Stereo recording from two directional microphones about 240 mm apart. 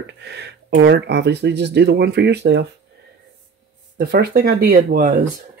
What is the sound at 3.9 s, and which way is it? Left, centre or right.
Speech, right.